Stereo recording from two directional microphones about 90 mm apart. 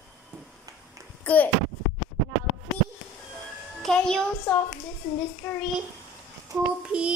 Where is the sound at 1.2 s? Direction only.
20° left (ahead or behind).